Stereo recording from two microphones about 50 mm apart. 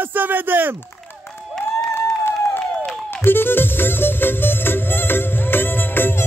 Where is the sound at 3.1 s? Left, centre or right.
Left.